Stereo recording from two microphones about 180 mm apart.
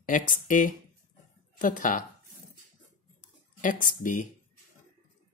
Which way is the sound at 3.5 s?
45° left (ahead or behind).